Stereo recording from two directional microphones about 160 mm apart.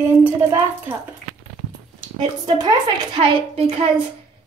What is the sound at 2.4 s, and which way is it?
A woman's voice, 25° right (ahead or behind).